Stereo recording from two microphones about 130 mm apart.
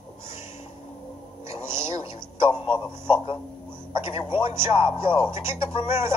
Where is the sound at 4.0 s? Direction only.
45° left (ahead or behind).